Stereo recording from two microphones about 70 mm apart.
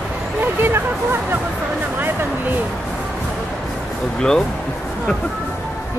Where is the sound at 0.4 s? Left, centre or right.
Right.